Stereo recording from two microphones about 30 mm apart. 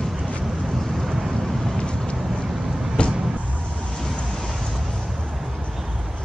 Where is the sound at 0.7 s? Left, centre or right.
Centre.